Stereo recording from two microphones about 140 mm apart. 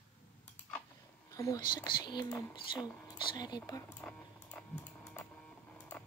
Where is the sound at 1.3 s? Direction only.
25° left (ahead or behind).